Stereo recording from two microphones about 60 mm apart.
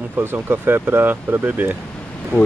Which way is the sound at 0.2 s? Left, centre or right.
Right.